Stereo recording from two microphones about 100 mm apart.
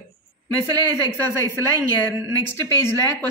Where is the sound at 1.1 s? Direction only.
25° left (ahead or behind).